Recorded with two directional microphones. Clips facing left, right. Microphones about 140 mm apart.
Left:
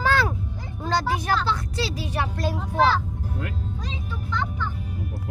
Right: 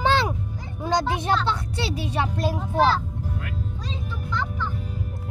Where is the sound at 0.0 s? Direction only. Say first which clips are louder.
Right 1 dB; 25° right (ahead or behind).